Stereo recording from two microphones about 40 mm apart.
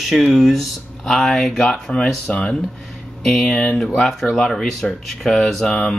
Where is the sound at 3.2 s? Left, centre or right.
Centre.